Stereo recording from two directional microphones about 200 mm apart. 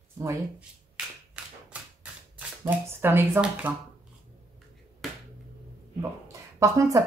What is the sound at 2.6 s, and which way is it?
Speech, 10° right (ahead or behind).